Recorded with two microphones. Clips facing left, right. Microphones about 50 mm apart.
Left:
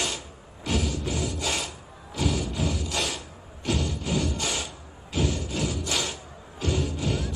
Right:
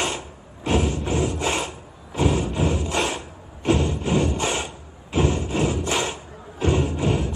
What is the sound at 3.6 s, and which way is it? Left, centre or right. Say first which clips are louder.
Rub: right 7 dB; right.